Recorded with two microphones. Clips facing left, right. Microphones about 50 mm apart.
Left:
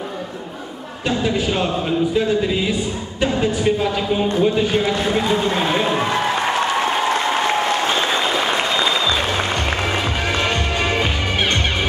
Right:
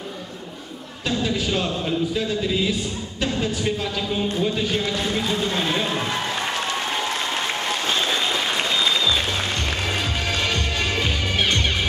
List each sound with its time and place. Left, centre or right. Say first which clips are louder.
1.0 s speech: left 4 dB; centre
4.4 s run: left 8 dB; centre